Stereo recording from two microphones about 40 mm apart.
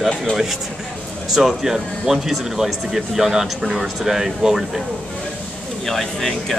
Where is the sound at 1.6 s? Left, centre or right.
Centre.